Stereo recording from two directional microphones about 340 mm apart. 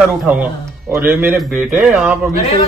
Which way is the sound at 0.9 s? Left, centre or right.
Centre.